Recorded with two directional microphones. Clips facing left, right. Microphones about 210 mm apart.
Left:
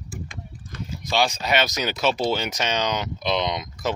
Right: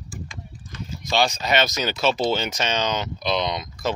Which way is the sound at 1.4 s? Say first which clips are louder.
Right 1 dB; 10° left (ahead or behind).